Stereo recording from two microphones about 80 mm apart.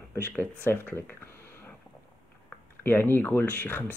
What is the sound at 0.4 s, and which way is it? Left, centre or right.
Speech, left.